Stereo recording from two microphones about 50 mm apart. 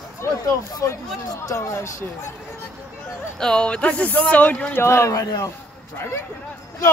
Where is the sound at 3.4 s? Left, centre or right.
Centre.